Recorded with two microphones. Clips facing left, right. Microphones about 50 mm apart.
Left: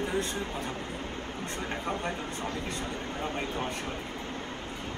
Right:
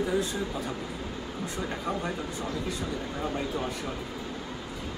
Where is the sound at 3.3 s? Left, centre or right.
Left.